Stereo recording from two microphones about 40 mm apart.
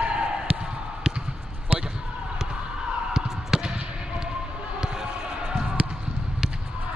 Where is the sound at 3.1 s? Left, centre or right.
Centre.